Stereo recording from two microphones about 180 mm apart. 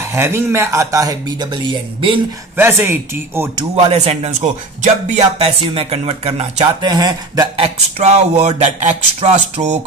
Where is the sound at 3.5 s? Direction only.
35° right (ahead or behind).